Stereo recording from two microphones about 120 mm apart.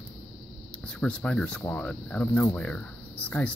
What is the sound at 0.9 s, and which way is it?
Speech, 10° left (ahead or behind).